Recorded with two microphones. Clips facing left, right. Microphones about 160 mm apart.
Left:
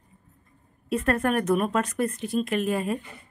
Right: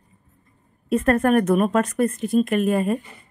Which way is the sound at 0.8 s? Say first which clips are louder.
Right 6 dB; 50° right (ahead or behind).